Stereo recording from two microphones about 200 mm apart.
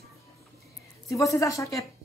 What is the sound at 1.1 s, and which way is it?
Speech, 15° left (ahead or behind).